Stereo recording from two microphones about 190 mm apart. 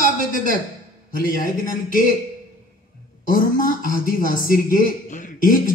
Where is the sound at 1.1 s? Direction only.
45° left (ahead or behind).